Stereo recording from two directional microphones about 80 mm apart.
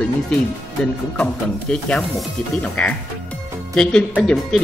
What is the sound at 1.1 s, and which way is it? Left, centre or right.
Speech, centre.